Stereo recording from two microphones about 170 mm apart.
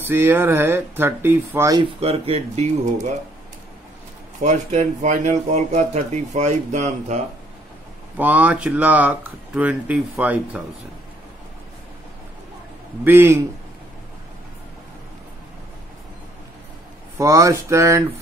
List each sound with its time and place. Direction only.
0.0 s speech: 15° right (ahead or behind)
2.0 s speech: 35° right (ahead or behind)
4.4 s speech: 45° right (ahead or behind)
8.2 s speech: 10° right (ahead or behind)
13.0 s speech: 15° right (ahead or behind)
17.2 s a sound: 20° right (ahead or behind)